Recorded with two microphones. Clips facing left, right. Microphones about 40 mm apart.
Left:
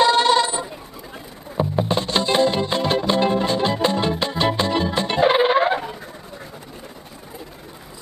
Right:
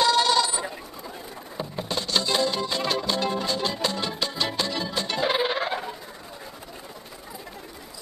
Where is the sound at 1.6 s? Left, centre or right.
Left.